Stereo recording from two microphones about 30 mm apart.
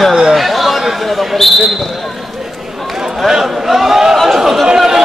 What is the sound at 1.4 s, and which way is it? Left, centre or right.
Basketball bounce, centre.